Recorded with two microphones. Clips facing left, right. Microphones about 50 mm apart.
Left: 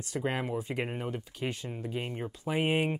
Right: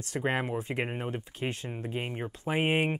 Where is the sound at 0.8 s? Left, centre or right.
Right.